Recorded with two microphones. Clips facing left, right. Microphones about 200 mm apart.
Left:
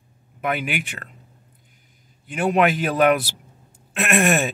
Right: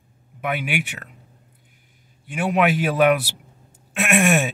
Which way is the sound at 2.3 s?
5° right (ahead or behind).